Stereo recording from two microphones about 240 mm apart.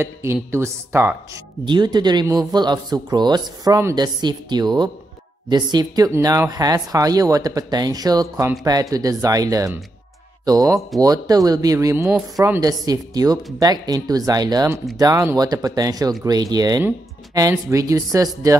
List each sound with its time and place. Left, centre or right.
0.0 s speech: centre